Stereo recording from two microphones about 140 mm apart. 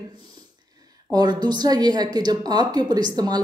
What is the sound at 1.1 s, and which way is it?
A woman's voice, 30° right (ahead or behind).